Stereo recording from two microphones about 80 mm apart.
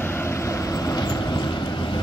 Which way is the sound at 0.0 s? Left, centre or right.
Left.